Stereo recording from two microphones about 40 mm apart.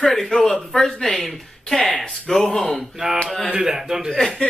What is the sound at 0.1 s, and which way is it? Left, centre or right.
Speech, centre.